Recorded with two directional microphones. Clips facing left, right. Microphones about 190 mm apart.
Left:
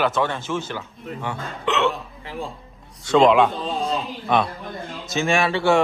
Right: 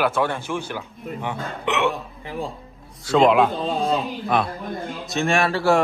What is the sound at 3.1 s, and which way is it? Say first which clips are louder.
A man's voice: left 1 dB; centre (ahead or behind).